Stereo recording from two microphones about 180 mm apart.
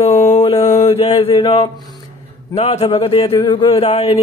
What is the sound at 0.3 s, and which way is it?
Mantra, 30° left (ahead or behind).